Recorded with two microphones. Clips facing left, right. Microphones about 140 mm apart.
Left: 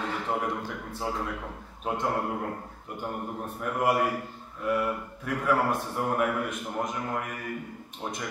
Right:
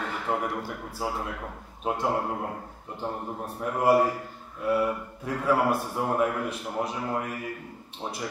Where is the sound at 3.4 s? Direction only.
30° right (ahead or behind).